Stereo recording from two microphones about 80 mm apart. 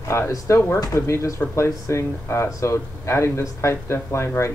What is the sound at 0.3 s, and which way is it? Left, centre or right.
Speech, left.